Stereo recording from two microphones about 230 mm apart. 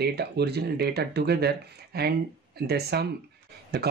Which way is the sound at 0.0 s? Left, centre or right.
Right.